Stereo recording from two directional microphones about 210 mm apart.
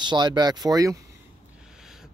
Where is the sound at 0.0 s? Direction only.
20° right (ahead or behind).